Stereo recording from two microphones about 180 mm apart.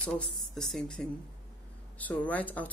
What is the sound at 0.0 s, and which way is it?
Speech, 5° left (ahead or behind).